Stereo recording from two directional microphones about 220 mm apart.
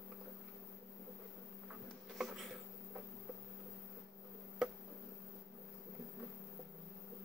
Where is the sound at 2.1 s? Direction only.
Centre (ahead or behind).